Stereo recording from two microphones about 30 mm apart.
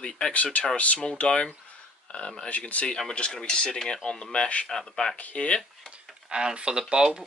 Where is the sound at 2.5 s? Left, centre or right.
Left.